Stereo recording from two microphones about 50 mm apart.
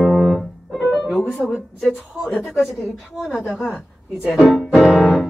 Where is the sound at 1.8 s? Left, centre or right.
Centre.